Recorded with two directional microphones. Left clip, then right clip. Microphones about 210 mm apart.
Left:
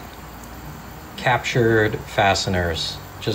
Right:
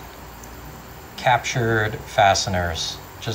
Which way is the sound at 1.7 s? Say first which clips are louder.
Left 4 dB; 15° right (ahead or behind).